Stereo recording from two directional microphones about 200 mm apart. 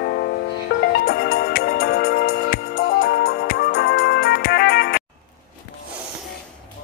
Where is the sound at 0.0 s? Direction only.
50° left (ahead or behind).